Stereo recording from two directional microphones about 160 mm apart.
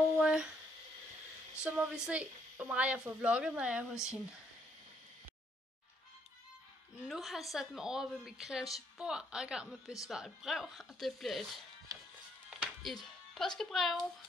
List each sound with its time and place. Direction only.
0.1 s a sound: 5° right (ahead or behind)
1.6 s a woman's voice: 5° right (ahead or behind)
7.1 s a woman's voice: centre (ahead or behind)
11.9 s music: 20° right (ahead or behind)
12.4 s music: 5° right (ahead or behind)